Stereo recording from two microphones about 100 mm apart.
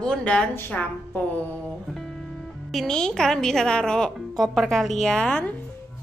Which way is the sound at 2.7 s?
5° left (ahead or behind).